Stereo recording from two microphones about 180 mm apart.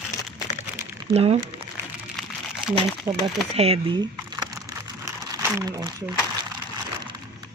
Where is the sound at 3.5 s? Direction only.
35° right (ahead or behind).